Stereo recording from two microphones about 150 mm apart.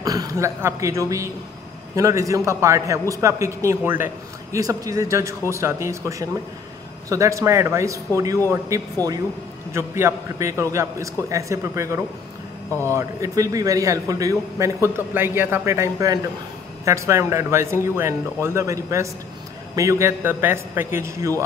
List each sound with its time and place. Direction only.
0.0 s a woman's voice: 25° right (ahead or behind)